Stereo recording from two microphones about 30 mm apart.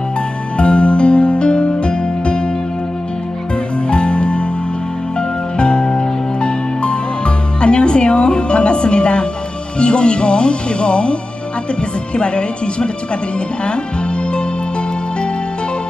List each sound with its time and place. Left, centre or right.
0.6 s music: left
3.9 s music: left
5.6 s music: left
12.2 s speech: left
13.7 s music: left